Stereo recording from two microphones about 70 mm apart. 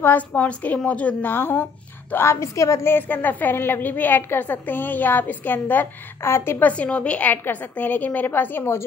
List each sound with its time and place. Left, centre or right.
0.0 s a woman's voice: left
1.3 s a woman's voice: left
2.9 s a woman's voice: left
6.2 s a woman's voice: left
6.6 s a woman's voice: centre